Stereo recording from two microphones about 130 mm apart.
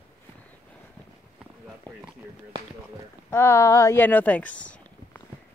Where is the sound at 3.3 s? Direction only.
20° left (ahead or behind).